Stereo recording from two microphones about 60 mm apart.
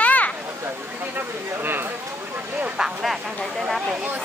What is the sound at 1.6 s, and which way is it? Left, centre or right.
Speech, right.